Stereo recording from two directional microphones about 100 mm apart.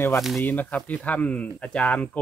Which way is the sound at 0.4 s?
15° left (ahead or behind).